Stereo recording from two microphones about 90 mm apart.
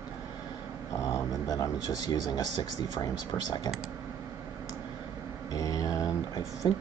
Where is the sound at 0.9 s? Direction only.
40° left (ahead or behind).